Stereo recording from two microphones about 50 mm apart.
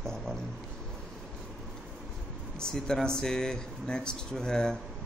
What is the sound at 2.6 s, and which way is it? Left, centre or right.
Speech, centre.